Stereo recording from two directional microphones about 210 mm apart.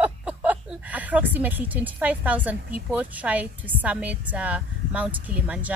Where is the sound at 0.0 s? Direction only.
5° right (ahead or behind).